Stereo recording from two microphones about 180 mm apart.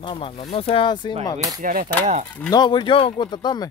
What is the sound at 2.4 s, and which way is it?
Speech, 25° left (ahead or behind).